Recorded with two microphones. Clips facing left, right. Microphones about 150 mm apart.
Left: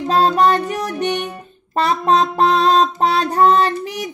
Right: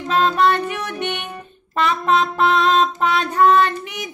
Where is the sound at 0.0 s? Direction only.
35° left (ahead or behind).